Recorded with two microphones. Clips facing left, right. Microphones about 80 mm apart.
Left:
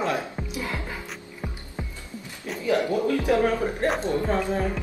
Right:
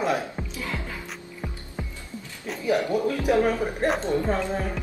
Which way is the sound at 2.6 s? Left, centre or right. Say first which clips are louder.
Even; centre.